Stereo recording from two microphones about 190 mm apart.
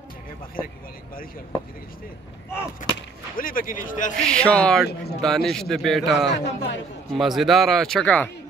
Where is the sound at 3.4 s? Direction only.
45° left (ahead or behind).